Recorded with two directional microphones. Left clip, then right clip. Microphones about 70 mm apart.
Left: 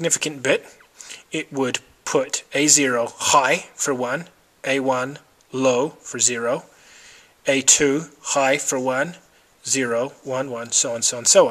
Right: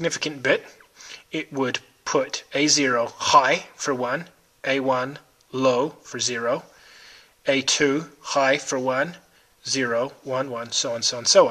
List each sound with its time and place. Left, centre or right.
0.0 s speech: left
10.3 s speech: left